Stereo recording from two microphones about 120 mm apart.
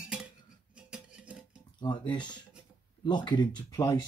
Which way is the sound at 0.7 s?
10° right (ahead or behind).